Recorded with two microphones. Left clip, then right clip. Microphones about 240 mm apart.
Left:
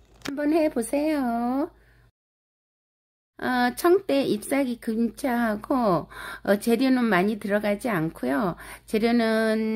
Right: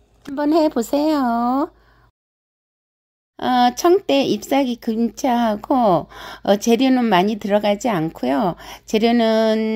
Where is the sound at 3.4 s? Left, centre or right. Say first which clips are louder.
Right 8 dB; centre.